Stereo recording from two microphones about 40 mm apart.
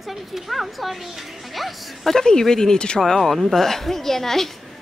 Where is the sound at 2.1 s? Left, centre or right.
Centre.